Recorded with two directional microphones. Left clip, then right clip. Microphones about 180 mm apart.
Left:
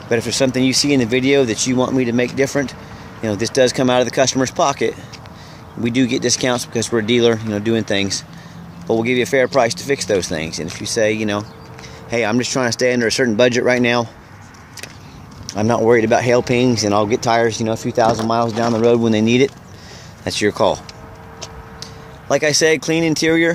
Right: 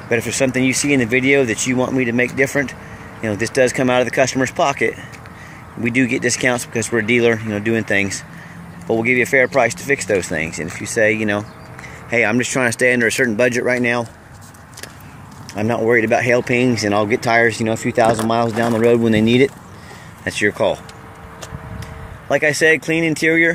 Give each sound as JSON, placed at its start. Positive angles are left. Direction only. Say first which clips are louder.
{"t": 0.1, "sound": "speech", "louder": "left 1 dB", "side_deg": 20}
{"t": 5.9, "sound": "speech", "louder": "even", "side_deg": 15}
{"t": 15.5, "sound": "speech", "louder": "left 2 dB", "side_deg": 25}
{"t": 20.2, "sound": "speech", "louder": "left 1 dB", "side_deg": 25}
{"t": 22.3, "sound": "speech", "louder": "even", "side_deg": 20}